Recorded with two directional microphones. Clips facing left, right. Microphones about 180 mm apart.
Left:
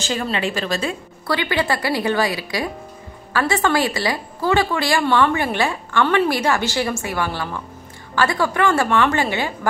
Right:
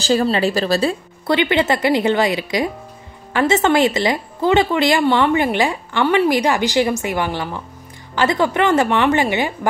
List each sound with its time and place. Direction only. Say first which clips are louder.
0.0 s speech: right 7 dB; 35° right (ahead or behind)
1.2 s a woman's voice: right 5 dB; 20° right (ahead or behind)